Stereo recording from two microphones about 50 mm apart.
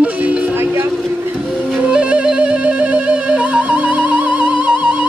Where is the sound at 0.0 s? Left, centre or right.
Right.